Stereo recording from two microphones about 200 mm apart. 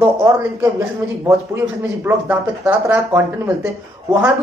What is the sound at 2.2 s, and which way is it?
Speech, 10° right (ahead or behind).